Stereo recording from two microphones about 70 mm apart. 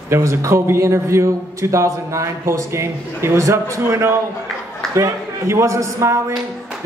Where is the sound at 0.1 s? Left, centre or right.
Right.